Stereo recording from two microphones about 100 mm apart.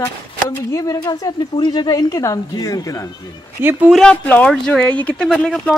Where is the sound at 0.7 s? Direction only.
35° left (ahead or behind).